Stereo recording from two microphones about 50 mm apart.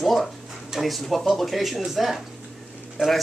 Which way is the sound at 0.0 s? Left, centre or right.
Centre.